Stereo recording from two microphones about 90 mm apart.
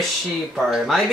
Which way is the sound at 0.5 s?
Centre (ahead or behind).